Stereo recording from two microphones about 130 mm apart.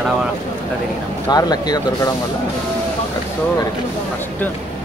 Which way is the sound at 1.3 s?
30° left (ahead or behind).